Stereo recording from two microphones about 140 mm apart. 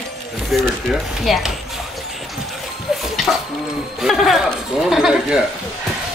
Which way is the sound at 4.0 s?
Centre (ahead or behind).